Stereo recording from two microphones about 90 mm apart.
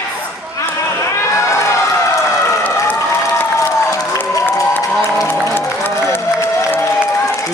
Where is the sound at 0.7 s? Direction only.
30° left (ahead or behind).